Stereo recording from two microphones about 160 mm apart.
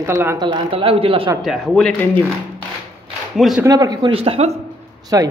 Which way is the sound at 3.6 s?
25° right (ahead or behind).